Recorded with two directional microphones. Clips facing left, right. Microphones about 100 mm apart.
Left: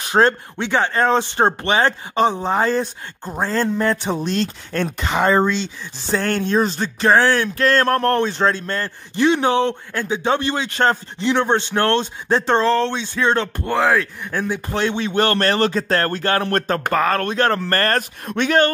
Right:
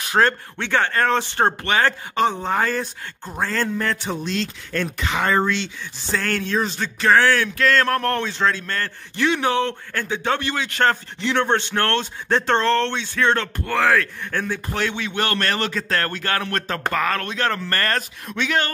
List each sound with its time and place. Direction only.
0.0 s speech: 25° left (ahead or behind); by 18.7 s 45° left (ahead or behind)